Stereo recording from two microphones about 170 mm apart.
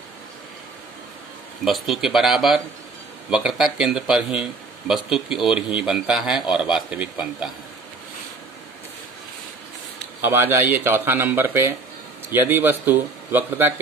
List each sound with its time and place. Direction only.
1.6 s speech: centre (ahead or behind)
10.2 s speech: 15° right (ahead or behind)